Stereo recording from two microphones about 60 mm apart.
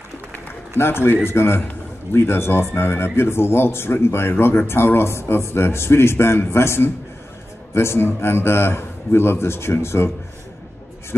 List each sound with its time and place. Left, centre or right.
0.7 s a man's voice: left